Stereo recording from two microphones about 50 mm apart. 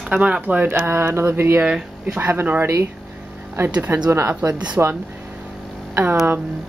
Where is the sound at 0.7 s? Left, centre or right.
Right.